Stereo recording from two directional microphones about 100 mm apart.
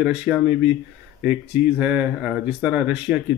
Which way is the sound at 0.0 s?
15° right (ahead or behind).